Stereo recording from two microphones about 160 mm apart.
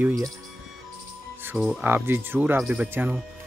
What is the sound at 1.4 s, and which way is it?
Speech, 5° right (ahead or behind).